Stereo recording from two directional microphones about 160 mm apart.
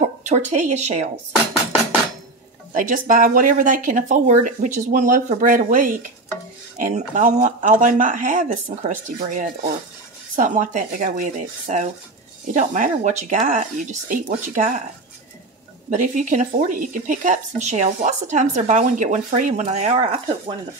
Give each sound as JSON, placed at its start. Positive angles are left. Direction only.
{"t": 0.2, "sound": "speech", "side_deg": -45}
{"t": 2.7, "sound": "speech", "side_deg": -55}
{"t": 15.9, "sound": "speech", "side_deg": -55}